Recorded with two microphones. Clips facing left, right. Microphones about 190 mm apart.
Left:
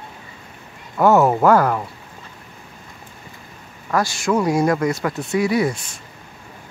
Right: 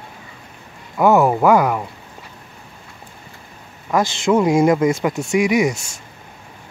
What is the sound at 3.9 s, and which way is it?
Speech, 20° right (ahead or behind).